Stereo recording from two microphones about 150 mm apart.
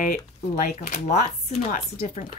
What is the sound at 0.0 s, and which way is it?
Speech, 65° left (ahead or behind).